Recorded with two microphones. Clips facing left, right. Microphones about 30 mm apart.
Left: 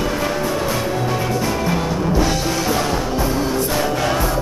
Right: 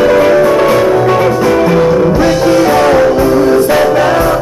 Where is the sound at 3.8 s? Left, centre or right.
Right.